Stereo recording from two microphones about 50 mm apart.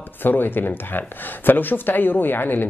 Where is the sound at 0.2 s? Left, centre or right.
Left.